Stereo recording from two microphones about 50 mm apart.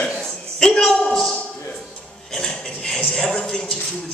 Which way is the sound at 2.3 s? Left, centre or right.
Centre.